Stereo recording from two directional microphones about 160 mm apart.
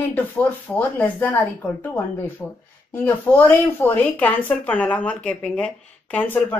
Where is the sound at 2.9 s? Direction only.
10° left (ahead or behind).